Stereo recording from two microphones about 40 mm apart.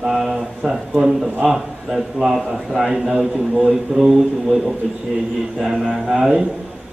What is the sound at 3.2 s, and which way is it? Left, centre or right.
Speech, right.